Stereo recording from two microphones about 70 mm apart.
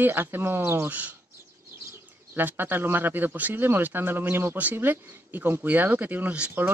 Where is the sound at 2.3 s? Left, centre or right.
Right.